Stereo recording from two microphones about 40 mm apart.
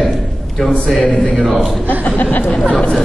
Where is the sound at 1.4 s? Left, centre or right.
Right.